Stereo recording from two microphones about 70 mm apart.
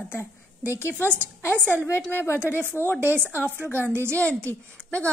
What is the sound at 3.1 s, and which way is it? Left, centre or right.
A woman's voice, right.